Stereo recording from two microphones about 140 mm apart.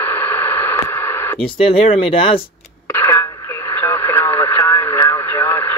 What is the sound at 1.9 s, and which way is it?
Speech, 40° left (ahead or behind).